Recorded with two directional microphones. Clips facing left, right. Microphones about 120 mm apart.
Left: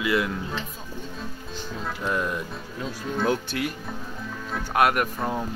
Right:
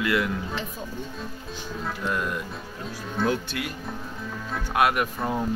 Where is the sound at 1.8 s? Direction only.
Centre (ahead or behind).